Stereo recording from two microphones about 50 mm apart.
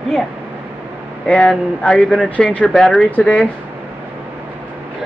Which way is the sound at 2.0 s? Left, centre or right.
Centre.